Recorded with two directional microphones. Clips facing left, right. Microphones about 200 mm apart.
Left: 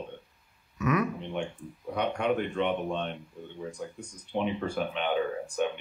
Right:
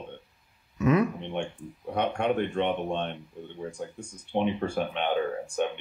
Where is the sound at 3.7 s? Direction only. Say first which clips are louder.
Right 2 dB; 25° right (ahead or behind).